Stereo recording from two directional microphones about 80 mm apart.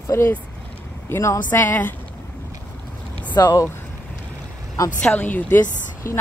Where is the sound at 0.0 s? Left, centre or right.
Left.